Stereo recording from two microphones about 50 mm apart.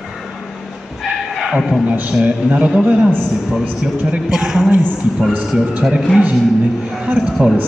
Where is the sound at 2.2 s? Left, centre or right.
Right.